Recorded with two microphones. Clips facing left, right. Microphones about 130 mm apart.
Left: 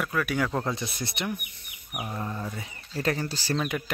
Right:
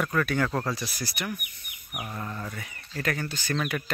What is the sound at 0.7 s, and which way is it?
Speech, 25° left (ahead or behind).